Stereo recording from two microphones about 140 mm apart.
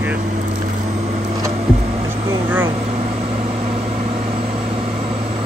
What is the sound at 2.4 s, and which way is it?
Vehicle, 15° right (ahead or behind).